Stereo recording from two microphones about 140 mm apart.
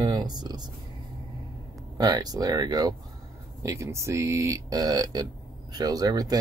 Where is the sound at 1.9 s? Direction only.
25° right (ahead or behind).